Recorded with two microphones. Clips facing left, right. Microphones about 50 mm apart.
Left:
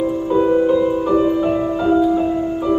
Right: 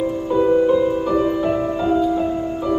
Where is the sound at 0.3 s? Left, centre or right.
Centre.